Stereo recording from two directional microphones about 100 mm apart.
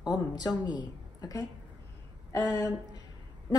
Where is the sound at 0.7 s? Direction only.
40° left (ahead or behind).